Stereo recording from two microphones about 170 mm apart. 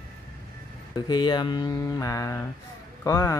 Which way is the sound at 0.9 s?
25° left (ahead or behind).